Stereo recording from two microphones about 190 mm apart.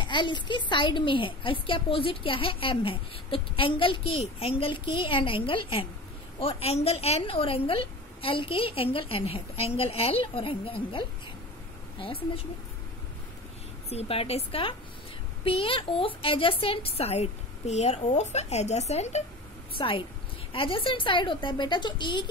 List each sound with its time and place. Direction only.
0.0 s a woman's voice: 25° left (ahead or behind)
13.8 s a woman's voice: 30° left (ahead or behind)
19.8 s a woman's voice: 25° left (ahead or behind)